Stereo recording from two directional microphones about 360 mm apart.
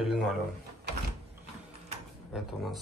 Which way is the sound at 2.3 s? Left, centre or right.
Centre.